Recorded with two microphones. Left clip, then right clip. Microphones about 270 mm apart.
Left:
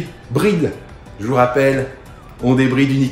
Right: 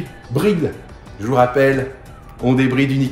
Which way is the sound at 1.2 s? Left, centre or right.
Centre.